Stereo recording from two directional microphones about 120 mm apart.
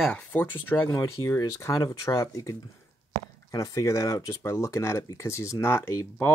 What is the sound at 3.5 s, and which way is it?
Speech, 30° left (ahead or behind).